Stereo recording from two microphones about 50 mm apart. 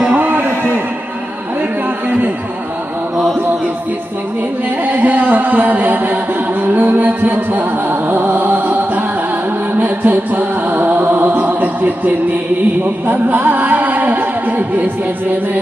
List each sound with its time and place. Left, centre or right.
0.1 s a sound: right
4.8 s music: right
13.1 s music: right